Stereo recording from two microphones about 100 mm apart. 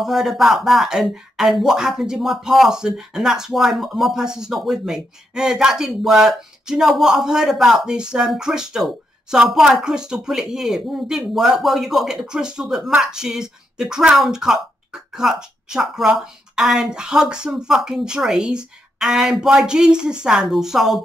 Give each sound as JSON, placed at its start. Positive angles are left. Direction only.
{"t": 0.0, "sound": "speech", "side_deg": -5}